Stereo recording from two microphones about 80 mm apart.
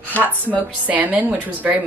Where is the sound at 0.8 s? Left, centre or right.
Centre.